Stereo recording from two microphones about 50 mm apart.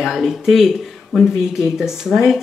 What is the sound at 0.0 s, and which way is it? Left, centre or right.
Speech, centre.